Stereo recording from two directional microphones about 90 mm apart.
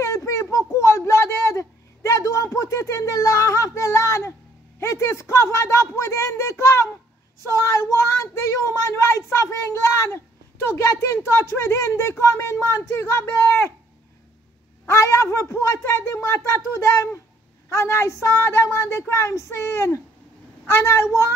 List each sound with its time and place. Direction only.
0.0 s a sound: 35° left (ahead or behind)
7.4 s speech: 30° left (ahead or behind)
14.9 s a woman's voice: 30° left (ahead or behind)